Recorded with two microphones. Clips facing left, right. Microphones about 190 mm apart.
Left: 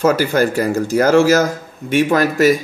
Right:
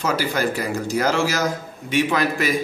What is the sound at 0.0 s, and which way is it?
A man's voice, 50° left (ahead or behind).